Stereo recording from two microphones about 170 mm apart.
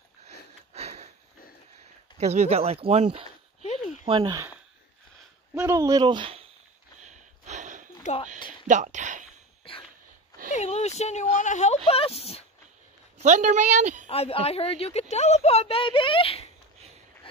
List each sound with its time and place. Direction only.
0.7 s sniff: 40° right (ahead or behind)
2.1 s speech: 40° right (ahead or behind)
5.5 s speech: 15° right (ahead or behind)
7.0 s a sound: 45° right (ahead or behind)
8.6 s speech: 45° right (ahead or behind)
9.6 s dog: 35° left (ahead or behind)
10.5 s speech: 40° left (ahead or behind)
13.2 s a woman's voice: 45° right (ahead or behind)
14.0 s a woman's voice: 35° left (ahead or behind)